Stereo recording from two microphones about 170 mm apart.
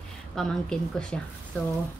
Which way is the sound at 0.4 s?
5° left (ahead or behind).